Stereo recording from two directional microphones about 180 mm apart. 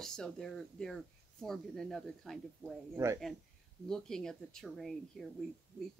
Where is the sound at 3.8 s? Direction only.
5° left (ahead or behind).